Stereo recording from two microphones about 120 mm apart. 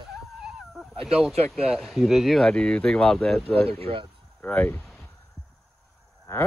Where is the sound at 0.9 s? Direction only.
55° right (ahead or behind).